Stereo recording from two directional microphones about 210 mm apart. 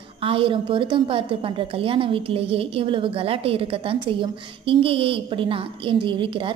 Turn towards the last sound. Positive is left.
turn(degrees=-25)  # may be behind; listen again after turning